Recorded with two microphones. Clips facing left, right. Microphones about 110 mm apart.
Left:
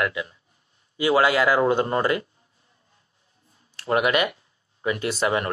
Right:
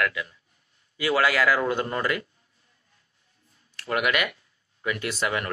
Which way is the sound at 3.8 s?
30° left (ahead or behind).